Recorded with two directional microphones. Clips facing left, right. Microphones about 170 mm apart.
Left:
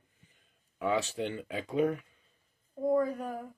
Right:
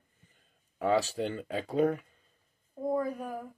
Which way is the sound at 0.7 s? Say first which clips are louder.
Right 3 dB; 35° right (ahead or behind).